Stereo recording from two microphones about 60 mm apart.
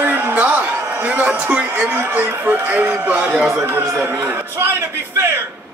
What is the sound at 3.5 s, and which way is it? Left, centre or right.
A man's voice, right.